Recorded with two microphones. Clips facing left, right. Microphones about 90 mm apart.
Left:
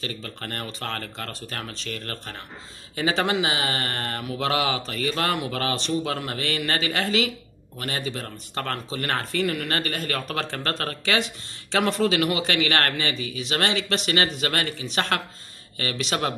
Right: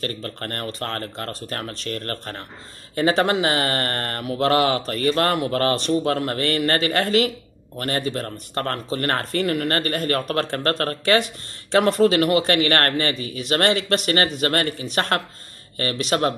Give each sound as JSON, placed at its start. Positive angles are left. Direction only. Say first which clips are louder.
{"t": 0.0, "sound": "speech", "louder": "right 5 dB", "side_deg": -45}